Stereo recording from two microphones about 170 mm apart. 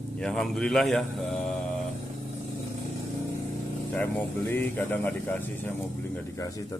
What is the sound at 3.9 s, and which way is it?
Speech, 10° left (ahead or behind).